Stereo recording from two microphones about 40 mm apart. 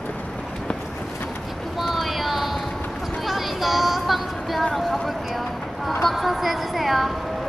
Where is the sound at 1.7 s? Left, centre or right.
Centre.